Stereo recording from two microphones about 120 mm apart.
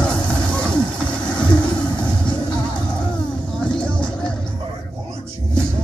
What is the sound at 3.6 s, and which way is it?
Vehicle, 10° left (ahead or behind).